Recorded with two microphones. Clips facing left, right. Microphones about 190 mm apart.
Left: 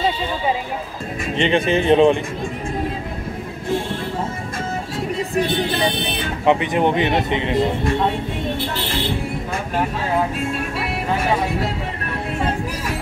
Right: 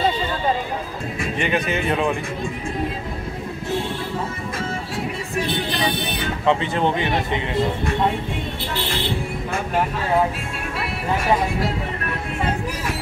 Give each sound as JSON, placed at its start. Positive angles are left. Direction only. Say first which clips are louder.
{"t": 1.3, "sound": "speech", "louder": "left 6 dB", "side_deg": 25}
{"t": 6.4, "sound": "speech", "louder": "left 3 dB", "side_deg": 15}